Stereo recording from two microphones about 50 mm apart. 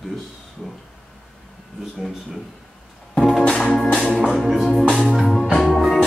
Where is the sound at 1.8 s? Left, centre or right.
Centre.